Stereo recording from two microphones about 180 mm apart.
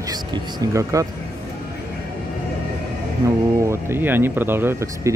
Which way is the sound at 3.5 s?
15° right (ahead or behind).